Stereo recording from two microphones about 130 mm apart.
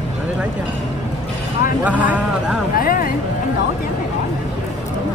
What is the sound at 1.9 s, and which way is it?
Speech, 10° right (ahead or behind).